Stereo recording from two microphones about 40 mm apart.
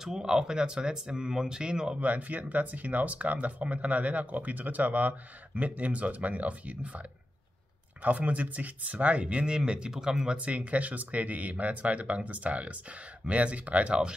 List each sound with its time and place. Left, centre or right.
0.0 s speech: centre
2.0 s speech: right
8.0 s speech: right
9.7 s speech: centre
10.3 s speech: right